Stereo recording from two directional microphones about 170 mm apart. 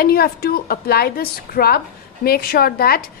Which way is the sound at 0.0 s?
65° left (ahead or behind).